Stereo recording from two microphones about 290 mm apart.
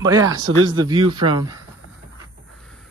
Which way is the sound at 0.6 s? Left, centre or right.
Centre.